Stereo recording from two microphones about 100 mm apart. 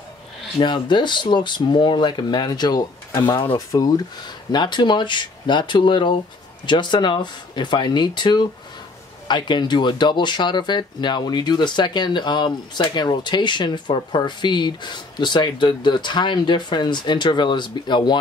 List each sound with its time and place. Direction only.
0.6 s speech: 50° left (ahead or behind)